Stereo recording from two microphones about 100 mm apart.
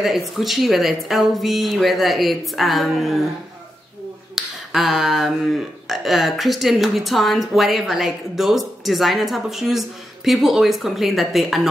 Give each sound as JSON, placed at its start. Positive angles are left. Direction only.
{"t": 0.0, "sound": "a woman's voice", "side_deg": 0}
{"t": 4.4, "sound": "a sound", "side_deg": 0}
{"t": 5.9, "sound": "a woman's voice", "side_deg": 0}